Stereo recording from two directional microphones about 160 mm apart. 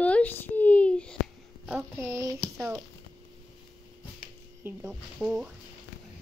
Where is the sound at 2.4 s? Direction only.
Centre (ahead or behind).